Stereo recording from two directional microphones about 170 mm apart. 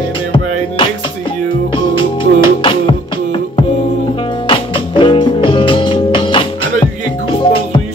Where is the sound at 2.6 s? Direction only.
30° left (ahead or behind).